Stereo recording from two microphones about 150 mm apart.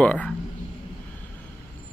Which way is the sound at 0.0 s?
10° left (ahead or behind).